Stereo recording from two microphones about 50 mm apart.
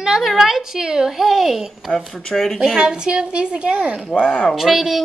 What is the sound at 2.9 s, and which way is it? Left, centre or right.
A woman's voice, centre.